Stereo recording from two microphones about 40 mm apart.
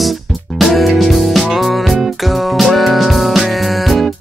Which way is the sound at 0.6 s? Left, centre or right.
Centre.